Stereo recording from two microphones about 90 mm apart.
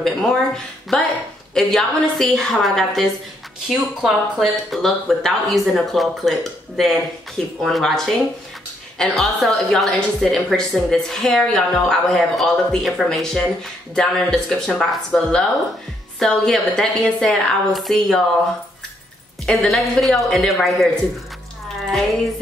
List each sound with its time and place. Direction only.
0.0 s a woman's voice: 5° left (ahead or behind)
7.6 s a woman's voice: 5° left (ahead or behind)
19.4 s a woman's voice: centre (ahead or behind)